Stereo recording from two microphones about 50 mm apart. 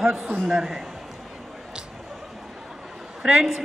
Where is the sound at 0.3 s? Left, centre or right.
Centre.